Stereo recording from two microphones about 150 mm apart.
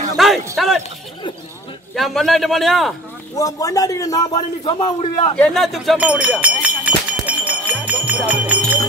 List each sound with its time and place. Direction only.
0.2 s a sound: centre (ahead or behind)
0.6 s speech: centre (ahead or behind)
2.0 s speech: centre (ahead or behind)
3.3 s a man's voice: 25° left (ahead or behind)
4.4 s a man's voice: 35° left (ahead or behind)
5.3 s speech: 5° left (ahead or behind)
6.8 s music: 10° right (ahead or behind)